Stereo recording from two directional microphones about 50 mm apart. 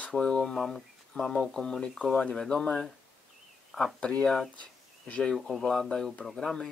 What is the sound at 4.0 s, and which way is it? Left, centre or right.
Speech, centre.